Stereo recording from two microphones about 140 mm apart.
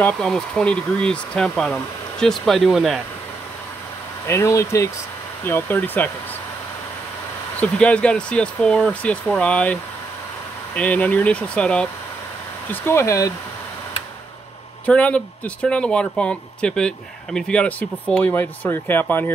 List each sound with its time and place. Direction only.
0.0 s speech: 5° left (ahead or behind)
4.3 s speech: 20° left (ahead or behind)
7.6 s speech: 10° left (ahead or behind)
12.7 s speech: 20° left (ahead or behind)
14.9 s speech: 10° left (ahead or behind)